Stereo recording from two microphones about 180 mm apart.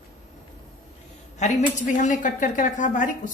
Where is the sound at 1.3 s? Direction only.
40° left (ahead or behind).